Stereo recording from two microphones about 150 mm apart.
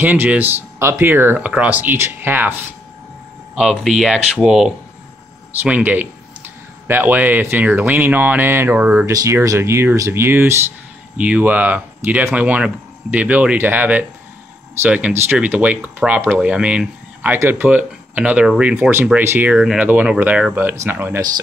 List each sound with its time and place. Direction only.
0.0 s speech: 10° right (ahead or behind)
3.5 s speech: centre (ahead or behind)
9.1 s speech: 20° right (ahead or behind)